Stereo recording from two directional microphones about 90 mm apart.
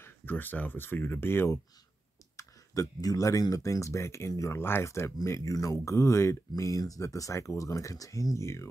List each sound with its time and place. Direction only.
0.0 s speech: 20° left (ahead or behind)
2.3 s speech: 40° left (ahead or behind)